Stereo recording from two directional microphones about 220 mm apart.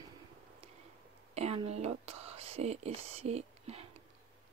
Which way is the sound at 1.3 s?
30° right (ahead or behind).